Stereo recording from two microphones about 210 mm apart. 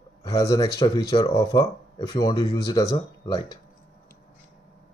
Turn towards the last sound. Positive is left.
turn(degrees=15)  # may be behind; listen again after turning